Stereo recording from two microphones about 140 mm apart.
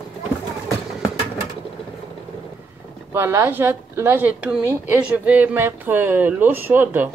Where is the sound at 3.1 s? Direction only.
15° right (ahead or behind).